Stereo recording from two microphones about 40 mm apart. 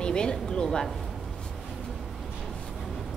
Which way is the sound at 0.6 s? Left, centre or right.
Centre.